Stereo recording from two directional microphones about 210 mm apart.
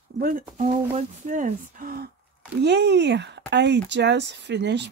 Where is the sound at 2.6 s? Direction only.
55° right (ahead or behind).